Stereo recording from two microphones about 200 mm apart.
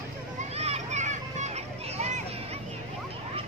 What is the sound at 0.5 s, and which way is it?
Children playing, 30° right (ahead or behind).